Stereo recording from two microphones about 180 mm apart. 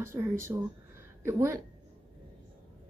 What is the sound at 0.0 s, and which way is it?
A woman's voice, 15° right (ahead or behind).